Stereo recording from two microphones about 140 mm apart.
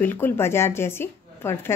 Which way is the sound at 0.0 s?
15° left (ahead or behind).